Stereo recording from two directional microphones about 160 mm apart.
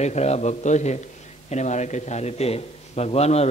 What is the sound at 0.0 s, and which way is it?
A man's voice, 45° left (ahead or behind).